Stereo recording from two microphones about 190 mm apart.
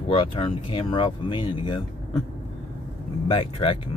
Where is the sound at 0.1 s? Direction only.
30° left (ahead or behind).